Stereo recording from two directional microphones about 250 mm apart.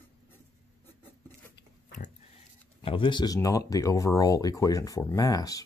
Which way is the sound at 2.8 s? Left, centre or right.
Centre.